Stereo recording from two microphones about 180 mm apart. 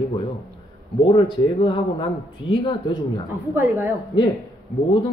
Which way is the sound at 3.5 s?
10° right (ahead or behind).